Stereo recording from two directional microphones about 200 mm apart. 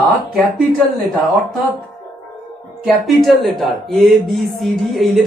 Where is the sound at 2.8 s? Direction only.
Centre (ahead or behind).